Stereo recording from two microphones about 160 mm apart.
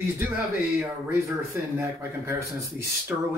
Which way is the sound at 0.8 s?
15° right (ahead or behind).